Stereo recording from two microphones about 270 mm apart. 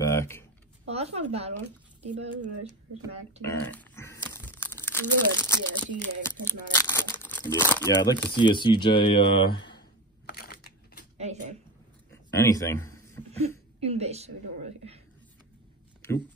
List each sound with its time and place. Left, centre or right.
0.0 s typing: centre
0.8 s a woman's voice: right
3.4 s speech: centre
9.8 s crushing: left
11.3 s a woman's voice: right
12.1 s a sound: centre
13.7 s a woman's voice: right